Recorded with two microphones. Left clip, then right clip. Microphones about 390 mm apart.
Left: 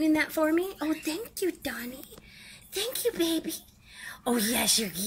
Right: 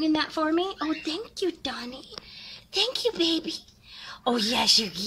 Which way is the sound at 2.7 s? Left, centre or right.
Centre.